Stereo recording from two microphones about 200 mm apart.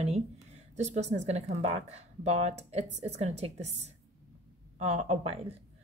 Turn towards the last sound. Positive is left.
turn(degrees=-30)  # may be behind; listen again after turning